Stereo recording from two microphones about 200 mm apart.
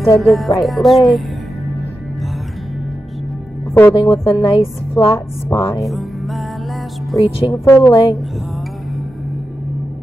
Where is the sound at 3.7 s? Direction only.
10° left (ahead or behind).